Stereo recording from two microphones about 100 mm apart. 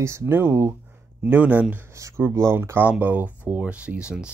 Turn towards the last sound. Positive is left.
turn(degrees=-10)  # may be behind; listen again after turning